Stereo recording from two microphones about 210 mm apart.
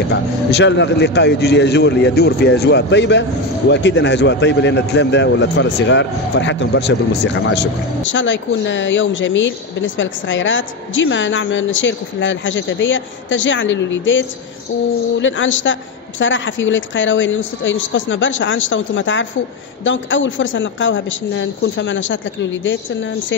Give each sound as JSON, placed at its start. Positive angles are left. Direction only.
{"t": 0.1, "sound": "speech", "side_deg": 55}